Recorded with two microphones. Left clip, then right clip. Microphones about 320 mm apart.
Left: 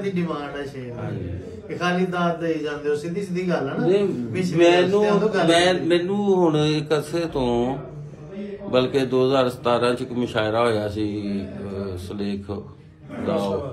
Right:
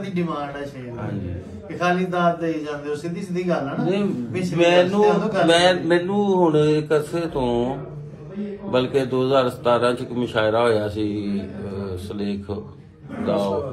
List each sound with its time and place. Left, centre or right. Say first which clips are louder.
0.0 s a man's voice: even; centre
4.6 s a man's voice: even; right
4.8 s a man's voice: right 1 dB; centre
8.7 s a man's voice: left 1 dB; centre